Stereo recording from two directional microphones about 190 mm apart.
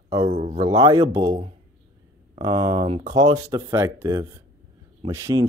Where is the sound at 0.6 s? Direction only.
20° right (ahead or behind).